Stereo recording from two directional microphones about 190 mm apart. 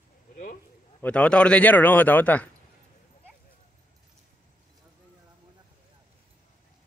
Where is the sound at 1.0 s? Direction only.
5° left (ahead or behind).